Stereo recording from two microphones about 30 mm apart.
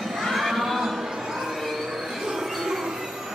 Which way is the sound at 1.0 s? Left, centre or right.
Centre.